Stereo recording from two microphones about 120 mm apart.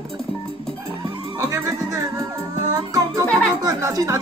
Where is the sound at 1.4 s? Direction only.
20° right (ahead or behind).